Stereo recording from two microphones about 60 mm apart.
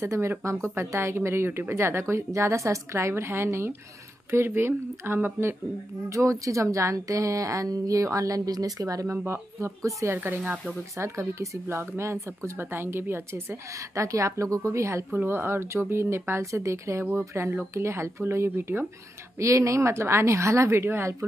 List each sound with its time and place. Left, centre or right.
0.0 s a woman's voice: right
6.0 s a woman's voice: right
9.0 s a woman's voice: right
9.8 s a woman's voice: right
10.1 s speech: right
11.0 s a woman's voice: right
12.5 s a woman's voice: right
15.1 s a woman's voice: right
17.5 s a woman's voice: right
19.4 s a woman's voice: right